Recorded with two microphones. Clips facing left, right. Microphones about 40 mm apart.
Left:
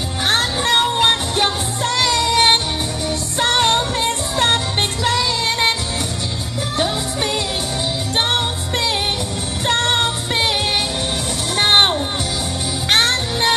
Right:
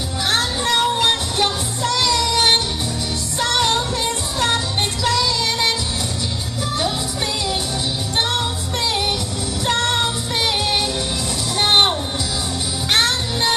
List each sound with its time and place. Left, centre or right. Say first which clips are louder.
0.3 s music: left 2 dB; left
0.9 s music: left 2 dB; left
8.2 s music: left 2 dB; left
12.9 s music: left 2 dB; left